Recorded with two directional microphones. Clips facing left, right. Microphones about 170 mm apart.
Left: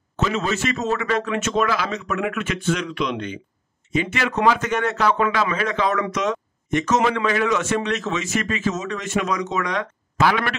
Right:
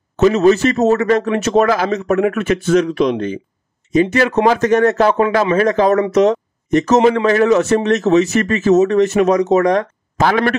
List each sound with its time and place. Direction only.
0.2 s a man's voice: 40° right (ahead or behind)